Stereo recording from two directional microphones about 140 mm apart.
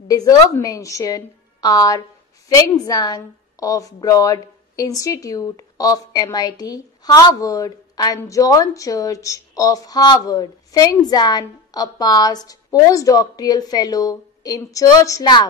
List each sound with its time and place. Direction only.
0.1 s a woman's voice: 25° left (ahead or behind)